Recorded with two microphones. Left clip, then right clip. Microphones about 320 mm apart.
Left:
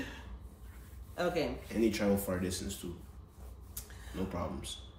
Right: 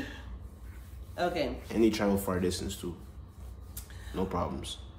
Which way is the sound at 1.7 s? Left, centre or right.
Centre.